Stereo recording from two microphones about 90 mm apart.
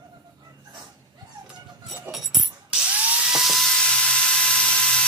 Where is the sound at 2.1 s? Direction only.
5° right (ahead or behind).